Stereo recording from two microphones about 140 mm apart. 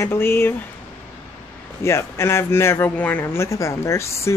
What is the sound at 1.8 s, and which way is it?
A man's voice, 20° left (ahead or behind).